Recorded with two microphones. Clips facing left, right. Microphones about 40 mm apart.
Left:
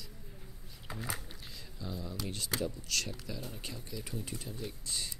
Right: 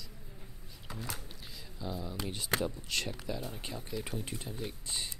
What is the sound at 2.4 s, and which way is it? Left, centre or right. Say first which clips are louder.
Speech: right 4 dB; right.